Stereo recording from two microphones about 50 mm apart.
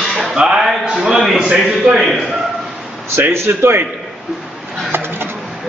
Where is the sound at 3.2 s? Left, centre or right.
Right.